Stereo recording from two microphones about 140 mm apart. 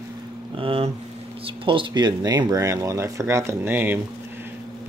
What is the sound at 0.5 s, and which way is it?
Speech, 40° right (ahead or behind).